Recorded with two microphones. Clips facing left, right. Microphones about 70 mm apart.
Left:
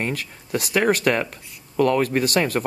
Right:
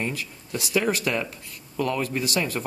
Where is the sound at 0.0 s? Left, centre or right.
Left.